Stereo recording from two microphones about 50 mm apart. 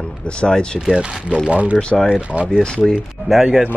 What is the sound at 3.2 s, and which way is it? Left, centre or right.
Speech, centre.